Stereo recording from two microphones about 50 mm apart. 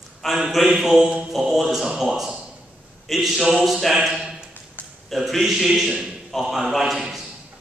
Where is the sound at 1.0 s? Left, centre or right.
Centre.